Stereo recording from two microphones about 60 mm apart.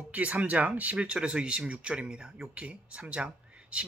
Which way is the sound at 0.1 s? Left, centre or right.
Right.